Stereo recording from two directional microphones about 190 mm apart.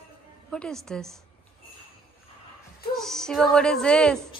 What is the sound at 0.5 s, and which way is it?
Speech, 5° left (ahead or behind).